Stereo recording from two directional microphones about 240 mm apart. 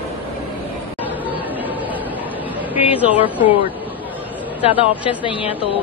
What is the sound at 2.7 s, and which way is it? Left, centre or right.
Speech, centre.